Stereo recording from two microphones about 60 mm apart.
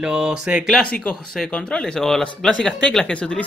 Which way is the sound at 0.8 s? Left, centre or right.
Centre.